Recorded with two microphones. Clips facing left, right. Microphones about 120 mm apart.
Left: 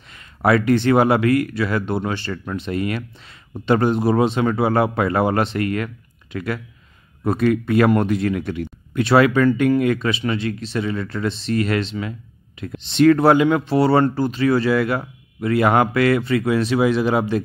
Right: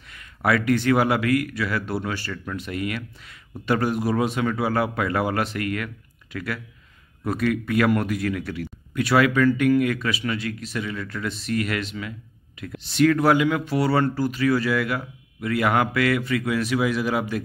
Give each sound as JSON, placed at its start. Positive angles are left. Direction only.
{"t": 0.1, "sound": "speech", "side_deg": 25}